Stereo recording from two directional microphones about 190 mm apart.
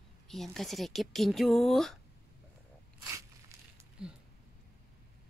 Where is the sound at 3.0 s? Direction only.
15° right (ahead or behind).